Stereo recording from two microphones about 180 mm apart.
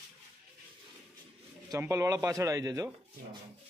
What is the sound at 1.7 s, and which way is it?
Speech, 20° right (ahead or behind).